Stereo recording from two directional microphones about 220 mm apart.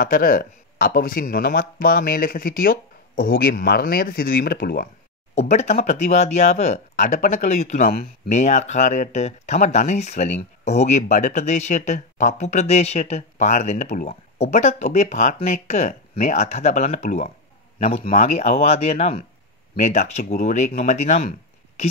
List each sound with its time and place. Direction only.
0.0 s speech: 40° left (ahead or behind)
5.3 s speech: 30° left (ahead or behind)